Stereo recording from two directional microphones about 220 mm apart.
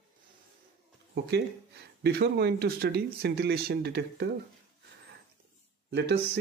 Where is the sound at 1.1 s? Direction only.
50° right (ahead or behind).